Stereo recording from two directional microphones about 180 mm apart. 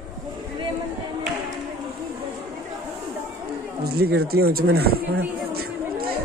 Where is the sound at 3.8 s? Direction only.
60° right (ahead or behind).